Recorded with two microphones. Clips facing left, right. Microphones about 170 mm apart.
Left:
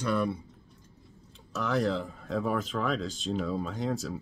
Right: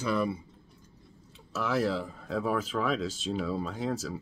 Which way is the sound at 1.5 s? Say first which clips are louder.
Even; 5° right (ahead or behind).